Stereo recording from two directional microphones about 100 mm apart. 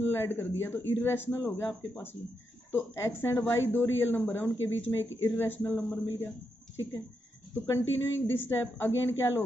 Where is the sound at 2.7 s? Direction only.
25° left (ahead or behind).